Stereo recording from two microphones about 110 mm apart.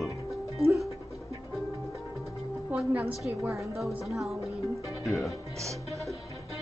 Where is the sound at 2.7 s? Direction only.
15° right (ahead or behind).